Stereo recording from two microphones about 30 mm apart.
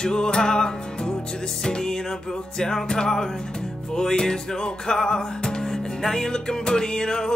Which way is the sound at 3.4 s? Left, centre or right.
Left.